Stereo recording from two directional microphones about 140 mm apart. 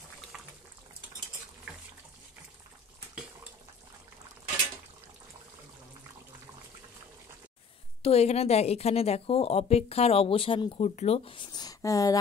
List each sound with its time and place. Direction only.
8.0 s a woman's voice: 50° left (ahead or behind); by 12.2 s 25° left (ahead or behind)